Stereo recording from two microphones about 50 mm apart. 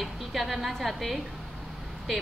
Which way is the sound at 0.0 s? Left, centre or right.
Centre.